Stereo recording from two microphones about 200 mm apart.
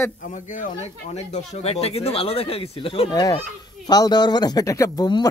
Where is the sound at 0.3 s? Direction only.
40° left (ahead or behind).